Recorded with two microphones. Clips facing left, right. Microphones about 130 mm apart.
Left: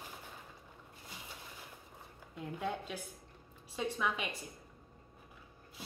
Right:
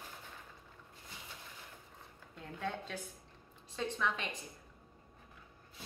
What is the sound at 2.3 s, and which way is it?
A woman's voice, 10° left (ahead or behind).